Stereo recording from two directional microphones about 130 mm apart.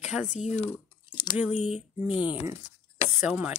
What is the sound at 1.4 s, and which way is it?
Speech, 10° right (ahead or behind).